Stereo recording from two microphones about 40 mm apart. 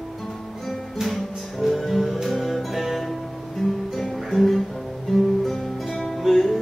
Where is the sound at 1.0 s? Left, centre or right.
Centre.